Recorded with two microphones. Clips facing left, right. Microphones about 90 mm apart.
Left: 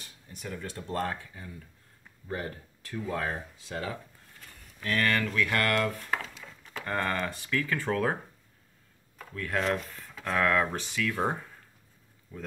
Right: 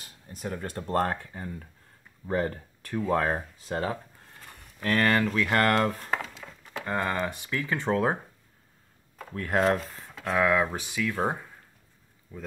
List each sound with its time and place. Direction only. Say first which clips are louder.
0.0 s speech: right 5 dB; 40° right (ahead or behind)
6.8 s speech: right 2 dB; 10° right (ahead or behind)
9.2 s speech: right 6 dB; 35° right (ahead or behind)
9.9 s speech: right 3 dB; 15° right (ahead or behind)